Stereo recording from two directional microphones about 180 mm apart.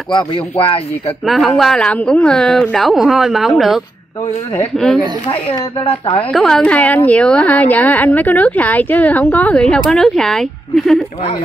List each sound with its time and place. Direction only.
0.1 s speech: 25° left (ahead or behind)
1.2 s a woman's voice: centre (ahead or behind)
5.9 s speech: 30° left (ahead or behind)
6.3 s a woman's voice: 5° left (ahead or behind)